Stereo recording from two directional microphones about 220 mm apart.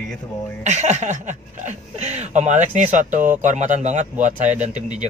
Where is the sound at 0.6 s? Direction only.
30° right (ahead or behind).